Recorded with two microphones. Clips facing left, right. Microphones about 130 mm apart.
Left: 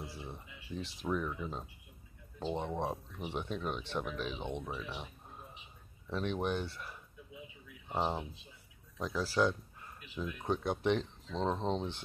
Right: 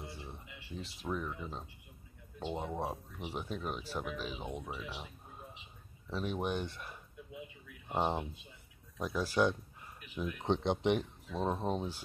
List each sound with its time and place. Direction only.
0.0 s speech: centre (ahead or behind)
6.0 s speech: 5° right (ahead or behind)